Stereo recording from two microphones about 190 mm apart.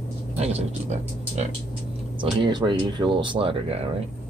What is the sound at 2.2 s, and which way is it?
Speech, 25° right (ahead or behind).